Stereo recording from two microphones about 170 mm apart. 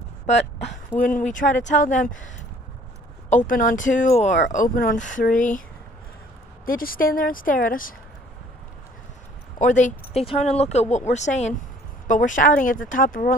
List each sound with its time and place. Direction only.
0.9 s speech: 50° left (ahead or behind)
3.3 s speech: 50° left (ahead or behind)
6.6 s speech: 60° left (ahead or behind)
9.6 s speech: 45° left (ahead or behind)